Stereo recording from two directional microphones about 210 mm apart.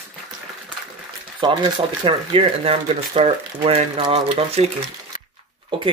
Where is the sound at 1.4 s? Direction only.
25° right (ahead or behind).